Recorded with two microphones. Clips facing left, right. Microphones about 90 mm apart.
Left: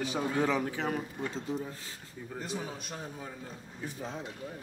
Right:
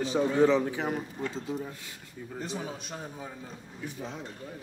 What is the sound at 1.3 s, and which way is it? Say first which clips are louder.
Speech: right 1 dB; 5° right (ahead or behind).